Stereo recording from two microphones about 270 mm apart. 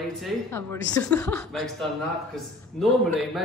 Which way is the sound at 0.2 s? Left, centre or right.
Centre.